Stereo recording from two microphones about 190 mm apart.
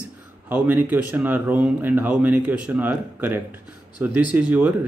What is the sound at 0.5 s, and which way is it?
Speech, 10° right (ahead or behind).